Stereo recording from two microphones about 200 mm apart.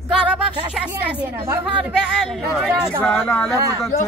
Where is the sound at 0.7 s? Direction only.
5° right (ahead or behind).